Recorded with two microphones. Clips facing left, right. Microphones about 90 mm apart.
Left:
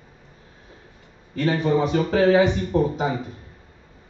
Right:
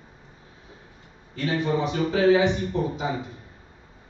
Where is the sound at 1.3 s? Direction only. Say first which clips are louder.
Left 4 dB; 45° left (ahead or behind).